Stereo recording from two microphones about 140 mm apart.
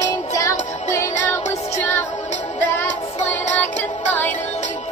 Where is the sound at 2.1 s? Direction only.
60° left (ahead or behind).